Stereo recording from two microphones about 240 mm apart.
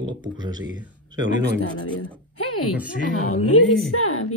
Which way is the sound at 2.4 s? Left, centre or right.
Left.